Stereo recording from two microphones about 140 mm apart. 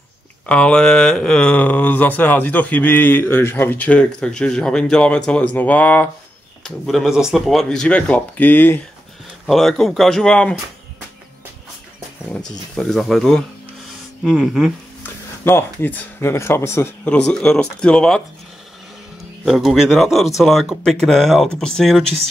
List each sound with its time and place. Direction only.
0.5 s speech: 5° left (ahead or behind)
9.5 s speech: centre (ahead or behind)
12.7 s speech: centre (ahead or behind)
15.0 s speech: 15° left (ahead or behind)
17.0 s speech: 10° left (ahead or behind)
19.4 s speech: centre (ahead or behind)